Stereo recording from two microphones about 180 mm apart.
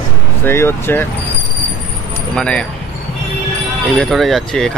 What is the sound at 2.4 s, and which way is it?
Speech, 5° left (ahead or behind).